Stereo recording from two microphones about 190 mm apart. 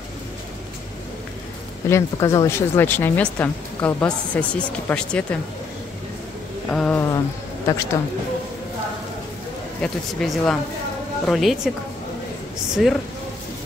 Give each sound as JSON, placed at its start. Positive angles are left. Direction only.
{"t": 1.9, "sound": "a woman's voice", "side_deg": 15}
{"t": 6.7, "sound": "a woman's voice", "side_deg": 5}
{"t": 9.8, "sound": "speech", "side_deg": 5}
{"t": 12.8, "sound": "speech", "side_deg": 0}